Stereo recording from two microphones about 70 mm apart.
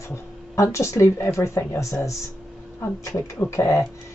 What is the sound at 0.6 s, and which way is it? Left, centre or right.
Speech, left.